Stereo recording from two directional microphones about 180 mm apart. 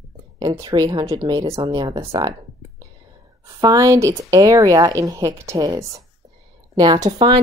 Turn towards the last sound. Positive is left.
turn(degrees=-25)  # may be behind; listen again after turning